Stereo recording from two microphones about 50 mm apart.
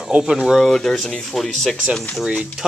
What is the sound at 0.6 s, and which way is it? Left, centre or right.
Speech, centre.